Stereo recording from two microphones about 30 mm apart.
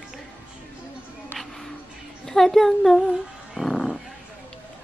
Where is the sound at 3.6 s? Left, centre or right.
Left.